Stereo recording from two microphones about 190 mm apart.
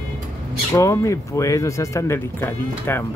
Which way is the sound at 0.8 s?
15° left (ahead or behind).